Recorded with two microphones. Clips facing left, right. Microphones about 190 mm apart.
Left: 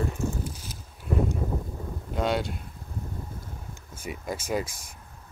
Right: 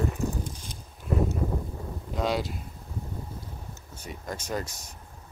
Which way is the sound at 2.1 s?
Centre (ahead or behind).